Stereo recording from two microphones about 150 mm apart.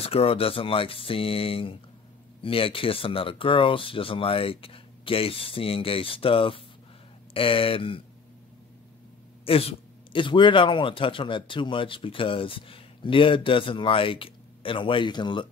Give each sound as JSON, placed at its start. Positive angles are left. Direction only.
{"t": 0.0, "sound": "speech", "side_deg": 40}
{"t": 9.4, "sound": "speech", "side_deg": 40}